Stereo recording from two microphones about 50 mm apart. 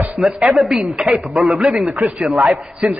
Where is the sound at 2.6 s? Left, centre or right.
Centre.